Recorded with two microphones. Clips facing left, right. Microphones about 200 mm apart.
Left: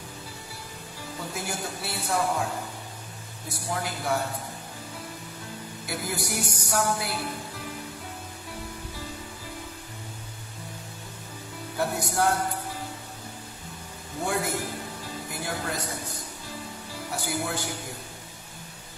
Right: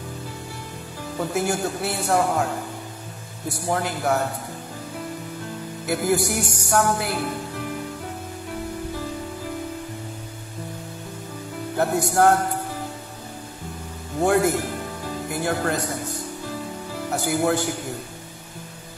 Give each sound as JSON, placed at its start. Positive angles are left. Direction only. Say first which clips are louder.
{"t": 1.1, "sound": "speech", "louder": "right 11 dB", "side_deg": -55}
{"t": 3.6, "sound": "speech", "louder": "right 7 dB", "side_deg": -60}
{"t": 5.9, "sound": "speech", "louder": "right 10 dB", "side_deg": -65}
{"t": 11.7, "sound": "speech", "louder": "right 7 dB", "side_deg": -55}
{"t": 14.2, "sound": "a man's voice", "louder": "right 9 dB", "side_deg": -60}
{"t": 16.9, "sound": "music", "louder": "right 7 dB", "side_deg": -55}